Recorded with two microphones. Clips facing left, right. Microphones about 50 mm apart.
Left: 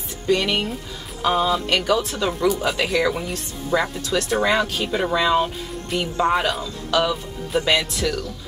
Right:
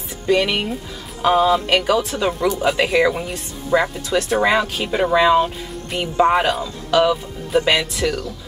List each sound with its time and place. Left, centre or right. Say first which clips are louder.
0.3 s speech: right 3 dB; centre